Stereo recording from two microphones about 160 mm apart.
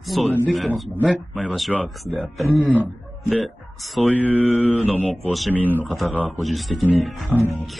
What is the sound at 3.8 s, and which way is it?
Speech, 10° left (ahead or behind).